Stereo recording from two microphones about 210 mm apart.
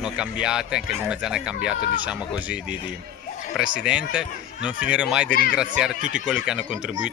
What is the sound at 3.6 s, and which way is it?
Speech, 5° right (ahead or behind).